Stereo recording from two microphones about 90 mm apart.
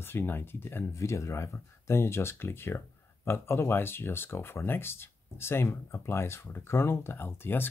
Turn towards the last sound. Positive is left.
turn(degrees=25)  # may be behind; listen again after turning